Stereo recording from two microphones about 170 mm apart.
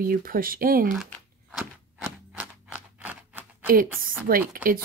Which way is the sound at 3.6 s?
60° right (ahead or behind).